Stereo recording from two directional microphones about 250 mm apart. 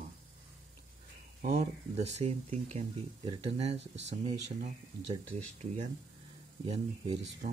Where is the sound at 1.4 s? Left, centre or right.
Right.